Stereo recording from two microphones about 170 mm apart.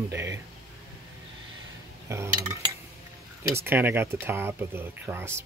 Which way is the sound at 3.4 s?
15° right (ahead or behind).